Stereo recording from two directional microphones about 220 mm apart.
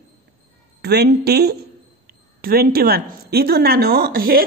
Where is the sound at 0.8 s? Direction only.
50° right (ahead or behind).